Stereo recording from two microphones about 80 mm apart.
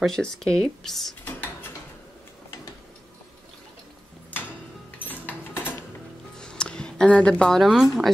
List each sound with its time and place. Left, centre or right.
0.0 s speech: centre
1.2 s drawer open or close: left
4.9 s dishes: left
6.3 s speech: centre